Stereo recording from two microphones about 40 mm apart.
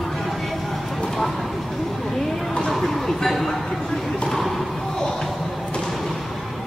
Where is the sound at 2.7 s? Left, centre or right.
Centre.